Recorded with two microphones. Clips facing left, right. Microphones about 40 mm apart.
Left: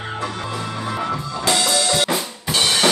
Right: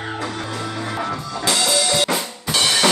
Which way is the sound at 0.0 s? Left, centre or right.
Left.